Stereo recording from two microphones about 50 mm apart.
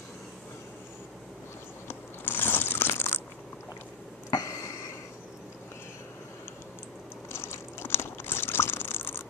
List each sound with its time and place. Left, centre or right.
1.9 s crunch: left
7.2 s crunch: left